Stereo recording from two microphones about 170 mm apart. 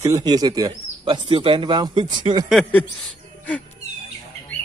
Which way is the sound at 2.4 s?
5° left (ahead or behind).